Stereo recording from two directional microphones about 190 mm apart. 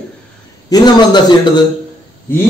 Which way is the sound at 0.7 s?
20° left (ahead or behind).